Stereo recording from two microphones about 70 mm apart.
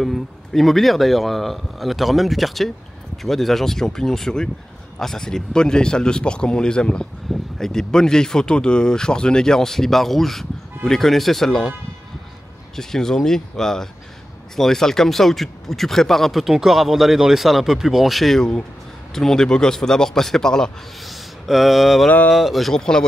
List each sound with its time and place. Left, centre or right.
0.0 s speech: centre
12.7 s speech: centre